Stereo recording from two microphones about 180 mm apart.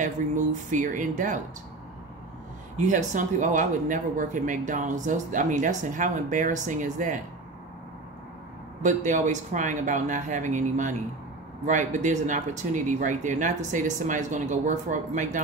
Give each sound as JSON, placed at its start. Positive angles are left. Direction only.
{"t": 0.0, "sound": "speech", "side_deg": -45}
{"t": 2.9, "sound": "speech", "side_deg": -45}
{"t": 8.8, "sound": "speech", "side_deg": -40}